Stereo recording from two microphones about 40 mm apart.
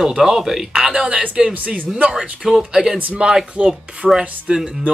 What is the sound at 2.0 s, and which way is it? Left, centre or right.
Speech, right.